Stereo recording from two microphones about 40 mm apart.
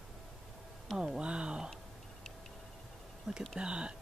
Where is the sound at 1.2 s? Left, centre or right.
Right.